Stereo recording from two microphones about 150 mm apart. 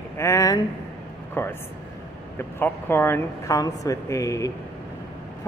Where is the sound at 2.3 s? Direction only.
15° left (ahead or behind).